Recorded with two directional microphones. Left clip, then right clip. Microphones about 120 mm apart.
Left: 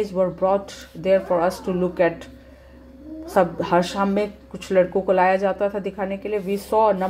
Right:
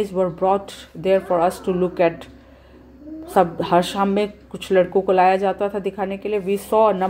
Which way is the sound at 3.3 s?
30° right (ahead or behind).